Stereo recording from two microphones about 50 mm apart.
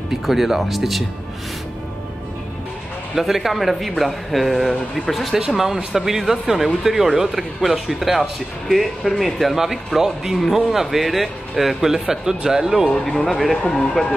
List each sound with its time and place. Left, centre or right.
0.1 s speech: centre
3.2 s speech: centre
13.0 s speech: centre
13.6 s speech: left